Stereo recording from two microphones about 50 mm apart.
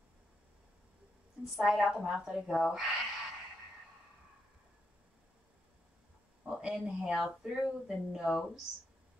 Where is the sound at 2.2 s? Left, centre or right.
Centre.